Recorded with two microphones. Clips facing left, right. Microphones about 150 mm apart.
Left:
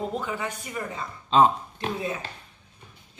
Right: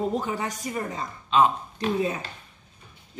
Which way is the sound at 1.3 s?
30° left (ahead or behind).